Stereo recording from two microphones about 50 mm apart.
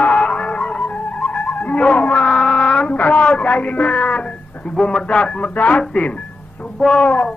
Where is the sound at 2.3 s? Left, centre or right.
Centre.